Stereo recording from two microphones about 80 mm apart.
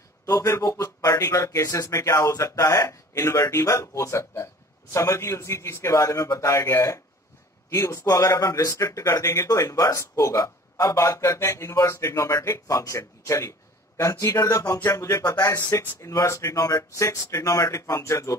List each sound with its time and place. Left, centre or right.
0.3 s speech: left
5.9 s speech: left
15.5 s speech: left